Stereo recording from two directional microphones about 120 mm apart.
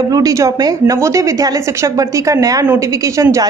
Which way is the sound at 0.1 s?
30° right (ahead or behind).